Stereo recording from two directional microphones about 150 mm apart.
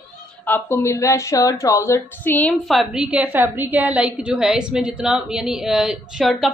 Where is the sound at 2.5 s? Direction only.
Centre (ahead or behind).